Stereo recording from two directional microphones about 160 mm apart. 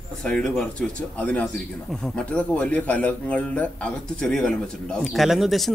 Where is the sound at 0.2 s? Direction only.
5° left (ahead or behind).